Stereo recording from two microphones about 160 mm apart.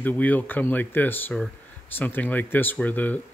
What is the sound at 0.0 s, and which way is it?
Speech, 10° left (ahead or behind).